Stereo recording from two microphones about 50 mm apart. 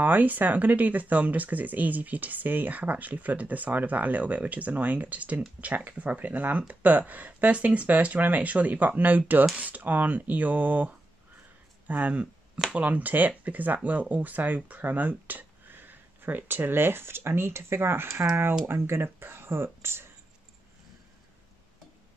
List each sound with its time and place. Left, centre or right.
0.0 s speech: right